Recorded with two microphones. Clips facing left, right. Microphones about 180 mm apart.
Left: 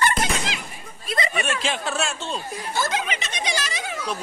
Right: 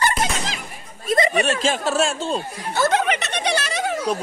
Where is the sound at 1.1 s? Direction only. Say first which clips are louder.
Right 7 dB; 45° right (ahead or behind).